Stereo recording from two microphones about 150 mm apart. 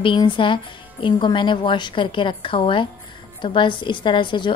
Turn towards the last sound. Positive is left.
turn(degrees=30)  # may be behind; listen again after turning